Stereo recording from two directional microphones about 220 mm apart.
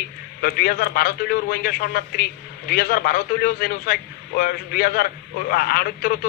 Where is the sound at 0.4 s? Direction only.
45° left (ahead or behind).